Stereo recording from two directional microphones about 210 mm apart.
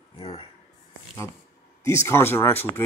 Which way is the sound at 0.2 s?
25° left (ahead or behind).